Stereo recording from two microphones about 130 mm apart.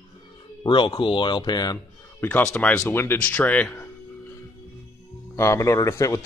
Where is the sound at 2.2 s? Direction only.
10° left (ahead or behind).